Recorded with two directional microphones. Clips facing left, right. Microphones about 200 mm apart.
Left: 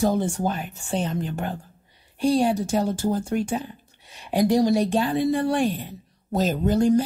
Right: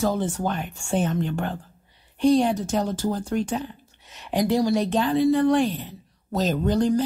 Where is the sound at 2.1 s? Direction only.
10° left (ahead or behind).